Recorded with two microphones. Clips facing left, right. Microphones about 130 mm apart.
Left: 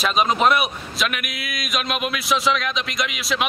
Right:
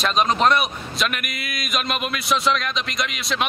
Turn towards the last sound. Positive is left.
turn(degrees=0)  # may be behind; listen again after turning